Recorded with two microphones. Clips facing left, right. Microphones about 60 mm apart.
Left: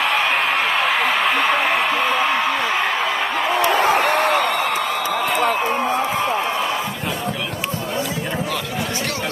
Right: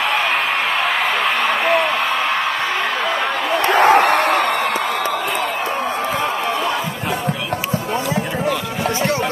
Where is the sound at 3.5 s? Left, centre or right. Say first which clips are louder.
Right 5 dB; right.